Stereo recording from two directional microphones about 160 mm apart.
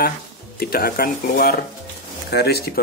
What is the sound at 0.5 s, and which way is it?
Speech, 70° left (ahead or behind).